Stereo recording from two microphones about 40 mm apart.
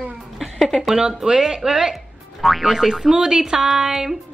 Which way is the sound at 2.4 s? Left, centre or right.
Centre.